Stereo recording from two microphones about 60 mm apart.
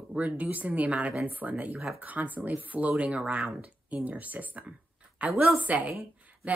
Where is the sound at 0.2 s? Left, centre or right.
Right.